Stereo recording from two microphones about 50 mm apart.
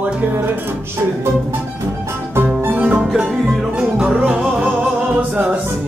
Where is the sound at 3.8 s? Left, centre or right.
Centre.